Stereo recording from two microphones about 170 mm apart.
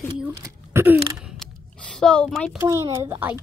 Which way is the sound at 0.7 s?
15° right (ahead or behind).